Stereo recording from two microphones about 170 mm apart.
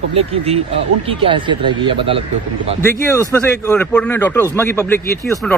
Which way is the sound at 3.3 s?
10° left (ahead or behind).